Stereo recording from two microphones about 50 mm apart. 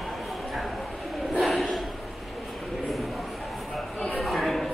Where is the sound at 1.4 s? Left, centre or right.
Centre.